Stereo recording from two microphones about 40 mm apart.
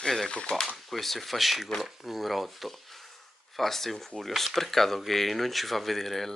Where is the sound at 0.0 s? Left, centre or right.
Centre.